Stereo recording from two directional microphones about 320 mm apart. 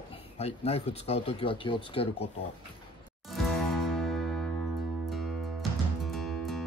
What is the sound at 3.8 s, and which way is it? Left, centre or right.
Music, centre.